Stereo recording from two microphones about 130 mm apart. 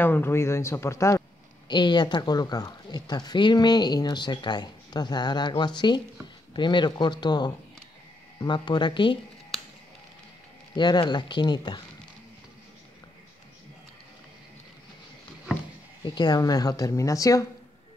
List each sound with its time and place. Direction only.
0.0 s a woman's voice: 15° left (ahead or behind)
1.7 s speech: 35° left (ahead or behind)
10.8 s speech: 35° left (ahead or behind)
16.2 s a woman's voice: 30° left (ahead or behind)